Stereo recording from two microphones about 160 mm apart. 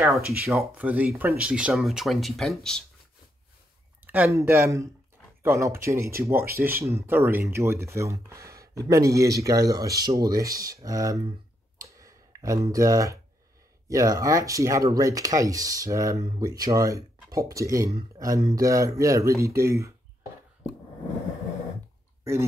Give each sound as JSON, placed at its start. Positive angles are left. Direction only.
{"t": 0.0, "sound": "speech", "side_deg": 0}
{"t": 4.0, "sound": "speech", "side_deg": -10}
{"t": 11.8, "sound": "a sound", "side_deg": -20}
{"t": 12.7, "sound": "speech", "side_deg": -20}